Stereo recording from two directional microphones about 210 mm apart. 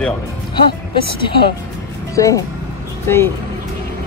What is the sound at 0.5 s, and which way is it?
Speech, 20° left (ahead or behind).